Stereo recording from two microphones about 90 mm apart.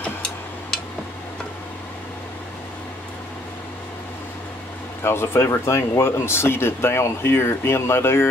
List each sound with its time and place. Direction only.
0.0 s tick-tock: 10° left (ahead or behind)
5.0 s speech: 30° left (ahead or behind)